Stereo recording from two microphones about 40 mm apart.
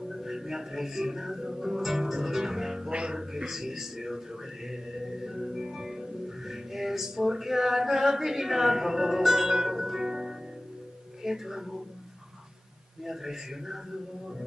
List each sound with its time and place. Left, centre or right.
0.1 s music: centre
2.9 s music: right
3.3 s a man's voice: centre
13.0 s a man's voice: centre